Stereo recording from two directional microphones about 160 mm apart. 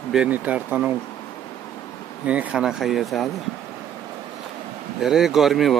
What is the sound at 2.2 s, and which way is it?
Speech, 10° right (ahead or behind).